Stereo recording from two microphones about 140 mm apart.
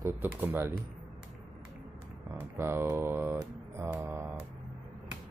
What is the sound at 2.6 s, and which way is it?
Mantra, 15° right (ahead or behind).